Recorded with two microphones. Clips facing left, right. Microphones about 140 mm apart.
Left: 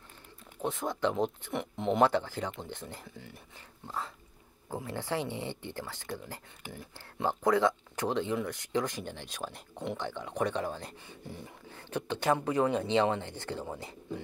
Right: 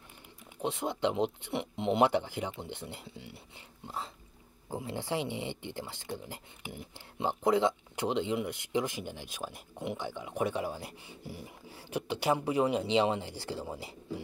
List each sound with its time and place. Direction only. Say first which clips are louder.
0.6 s speech: even; 20° right (ahead or behind)
4.8 s speech: even; 15° right (ahead or behind)